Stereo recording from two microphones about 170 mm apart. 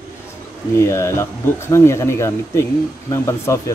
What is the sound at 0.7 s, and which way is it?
Speech, 15° left (ahead or behind).